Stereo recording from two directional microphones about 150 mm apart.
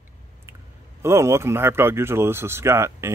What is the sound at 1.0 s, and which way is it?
Speech, 20° right (ahead or behind).